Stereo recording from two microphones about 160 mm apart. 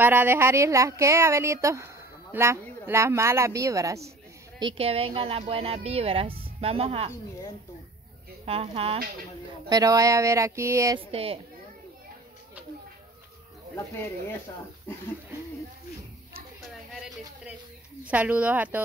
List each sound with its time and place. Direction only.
0.0 s speech: 15° right (ahead or behind)
4.6 s speech: 35° right (ahead or behind)
8.5 s speech: 40° right (ahead or behind)
9.7 s speech: 20° right (ahead or behind)
11.1 s speech: 40° right (ahead or behind)
13.7 s speech: 15° left (ahead or behind)
16.6 s a sound: centre (ahead or behind)
18.0 s speech: 10° right (ahead or behind)